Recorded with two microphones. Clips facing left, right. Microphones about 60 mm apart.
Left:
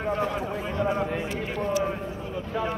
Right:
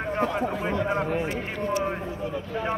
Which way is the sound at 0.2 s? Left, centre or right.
Right.